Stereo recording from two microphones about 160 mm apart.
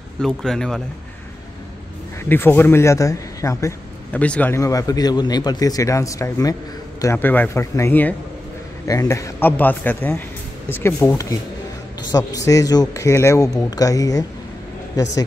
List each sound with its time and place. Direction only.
0.2 s speech: 5° left (ahead or behind)
2.2 s speech: 15° left (ahead or behind)
4.1 s speech: 10° left (ahead or behind)